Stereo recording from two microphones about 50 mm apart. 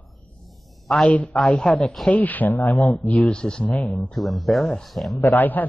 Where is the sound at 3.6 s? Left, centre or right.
Left.